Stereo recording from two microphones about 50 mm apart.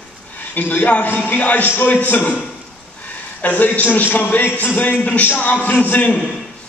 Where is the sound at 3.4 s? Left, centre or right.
Left.